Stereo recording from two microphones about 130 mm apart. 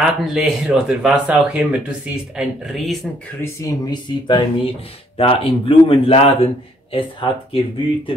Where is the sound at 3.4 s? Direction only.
25° left (ahead or behind).